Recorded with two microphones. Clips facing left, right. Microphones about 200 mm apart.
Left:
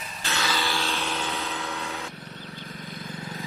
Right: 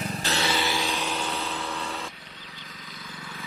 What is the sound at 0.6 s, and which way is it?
Vehicle, 15° right (ahead or behind).